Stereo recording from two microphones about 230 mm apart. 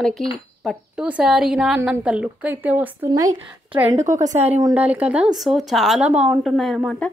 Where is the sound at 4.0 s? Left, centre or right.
Right.